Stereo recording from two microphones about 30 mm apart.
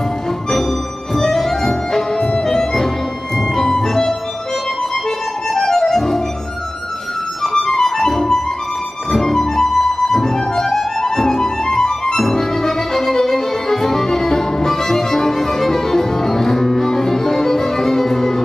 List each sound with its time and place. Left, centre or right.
1.1 s music: centre
5.5 s music: centre
7.6 s music: centre